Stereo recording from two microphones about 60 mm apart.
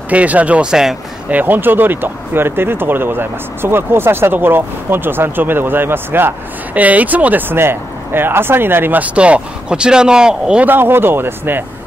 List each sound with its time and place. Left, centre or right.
0.1 s speech: right
1.3 s speech: right
6.7 s speech: right
9.0 s speech: right
10.6 s speech: right